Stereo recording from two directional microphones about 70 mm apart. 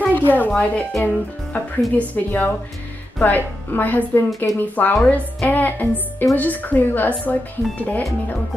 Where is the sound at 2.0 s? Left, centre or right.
Left.